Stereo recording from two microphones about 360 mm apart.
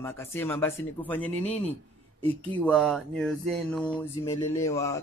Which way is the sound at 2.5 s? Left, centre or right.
Centre.